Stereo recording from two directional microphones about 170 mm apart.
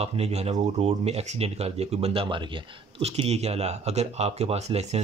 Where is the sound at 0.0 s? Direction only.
35° right (ahead or behind).